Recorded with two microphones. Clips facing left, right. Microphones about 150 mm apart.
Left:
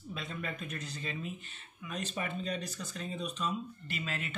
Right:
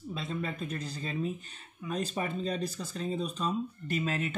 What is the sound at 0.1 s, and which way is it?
Speech, 30° right (ahead or behind).